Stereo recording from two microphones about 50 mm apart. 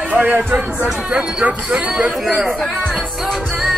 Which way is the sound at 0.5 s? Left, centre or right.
Right.